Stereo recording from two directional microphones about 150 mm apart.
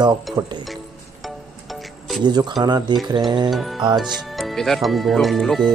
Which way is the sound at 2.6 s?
30° right (ahead or behind).